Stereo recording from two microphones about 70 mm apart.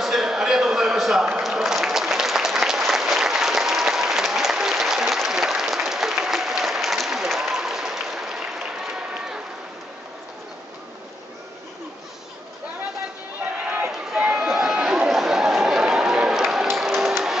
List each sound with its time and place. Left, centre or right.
0.0 s a sound: centre
1.4 s applause: centre
13.6 s run: centre
13.9 s chatter: centre